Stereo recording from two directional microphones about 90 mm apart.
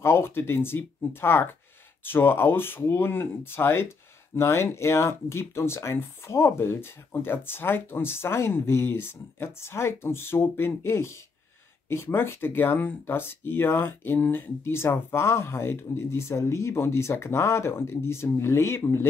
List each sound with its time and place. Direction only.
0.0 s speech: 25° left (ahead or behind)